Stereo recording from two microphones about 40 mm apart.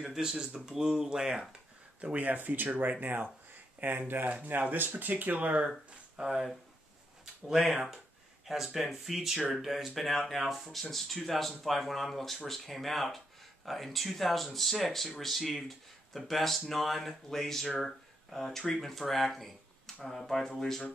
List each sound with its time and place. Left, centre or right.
0.2 s speech: centre
2.0 s speech: right
4.1 s speech: right
6.1 s speech: centre
7.4 s speech: centre